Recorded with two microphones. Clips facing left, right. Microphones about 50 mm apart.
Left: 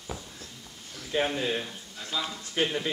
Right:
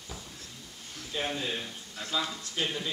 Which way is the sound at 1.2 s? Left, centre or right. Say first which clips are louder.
Left 4 dB; left.